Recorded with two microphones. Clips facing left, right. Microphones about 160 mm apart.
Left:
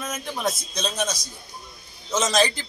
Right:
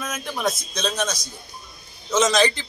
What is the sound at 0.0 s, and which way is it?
Speech, 25° left (ahead or behind).